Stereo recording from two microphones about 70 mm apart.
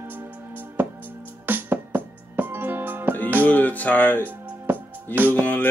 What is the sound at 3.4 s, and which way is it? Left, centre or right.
Speech, left.